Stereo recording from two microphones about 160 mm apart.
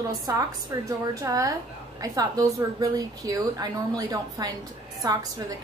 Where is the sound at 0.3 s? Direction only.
20° right (ahead or behind).